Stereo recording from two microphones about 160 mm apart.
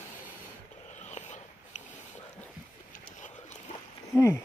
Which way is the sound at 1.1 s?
45° left (ahead or behind).